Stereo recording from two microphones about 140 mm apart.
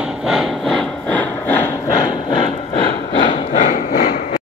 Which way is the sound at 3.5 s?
60° left (ahead or behind).